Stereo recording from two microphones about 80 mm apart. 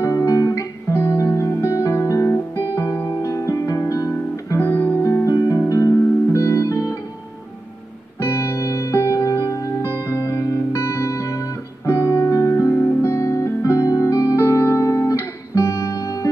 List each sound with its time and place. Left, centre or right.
0.0 s guitar: left
1.1 s music: left
3.9 s guitar: left
4.6 s music: left
8.2 s music: left
9.8 s music: right
10.2 s music: left